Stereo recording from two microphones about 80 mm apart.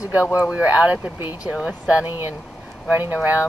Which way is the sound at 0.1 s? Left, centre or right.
Centre.